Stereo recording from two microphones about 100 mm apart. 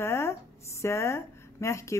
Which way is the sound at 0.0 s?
25° left (ahead or behind).